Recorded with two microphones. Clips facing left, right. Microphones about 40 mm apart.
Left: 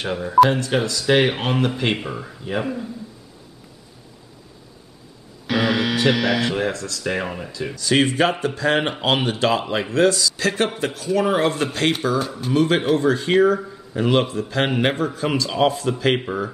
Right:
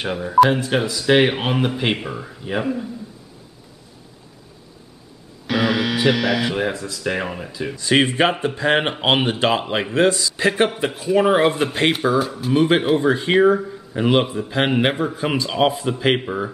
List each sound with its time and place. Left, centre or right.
0.0 s speech: centre
5.5 s speech: centre
7.7 s a man's voice: right
12.2 s speech: centre
12.5 s a man's voice: centre